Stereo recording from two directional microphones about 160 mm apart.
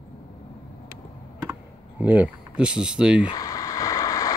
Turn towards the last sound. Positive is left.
turn(degrees=20)  # may be behind; listen again after turning